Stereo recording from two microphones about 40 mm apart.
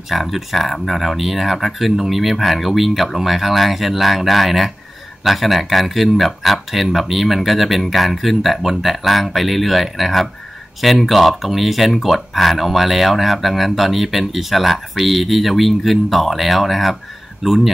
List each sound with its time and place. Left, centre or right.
0.1 s speech: centre